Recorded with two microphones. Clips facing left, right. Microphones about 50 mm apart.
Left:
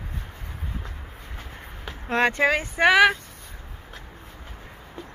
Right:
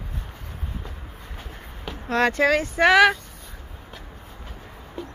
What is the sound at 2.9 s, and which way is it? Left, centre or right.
Speech, centre.